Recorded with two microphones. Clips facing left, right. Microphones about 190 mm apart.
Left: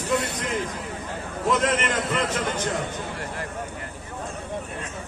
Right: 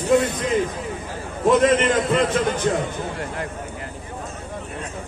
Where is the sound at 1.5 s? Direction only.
60° right (ahead or behind).